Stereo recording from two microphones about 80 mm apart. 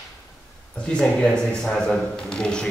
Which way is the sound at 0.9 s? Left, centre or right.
Centre.